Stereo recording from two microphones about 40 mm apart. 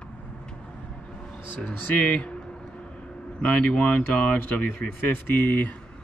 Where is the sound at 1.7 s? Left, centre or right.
Left.